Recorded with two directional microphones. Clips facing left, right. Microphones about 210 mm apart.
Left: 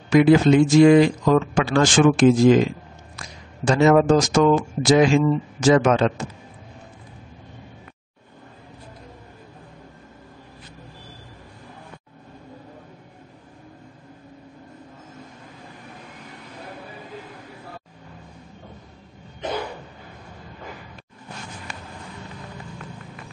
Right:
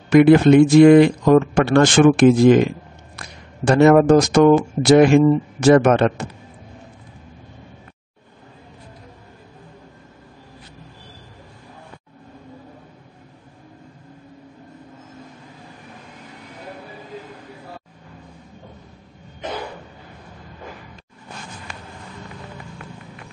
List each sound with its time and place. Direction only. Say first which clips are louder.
0.1 s speech: right 4 dB; 60° right (ahead or behind)